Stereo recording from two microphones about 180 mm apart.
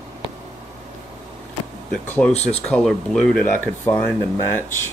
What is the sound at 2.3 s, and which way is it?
Speech, 35° left (ahead or behind).